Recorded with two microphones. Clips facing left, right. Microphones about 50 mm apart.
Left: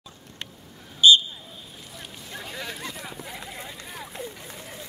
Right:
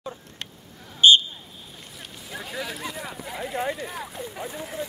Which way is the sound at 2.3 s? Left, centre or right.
Centre.